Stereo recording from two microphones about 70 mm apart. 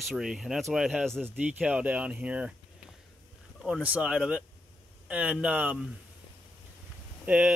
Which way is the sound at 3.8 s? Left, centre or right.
Centre.